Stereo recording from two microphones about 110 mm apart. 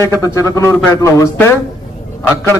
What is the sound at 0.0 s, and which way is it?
A man's voice, 25° left (ahead or behind).